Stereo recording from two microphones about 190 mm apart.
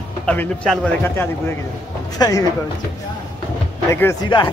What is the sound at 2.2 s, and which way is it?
Speech, 20° left (ahead or behind).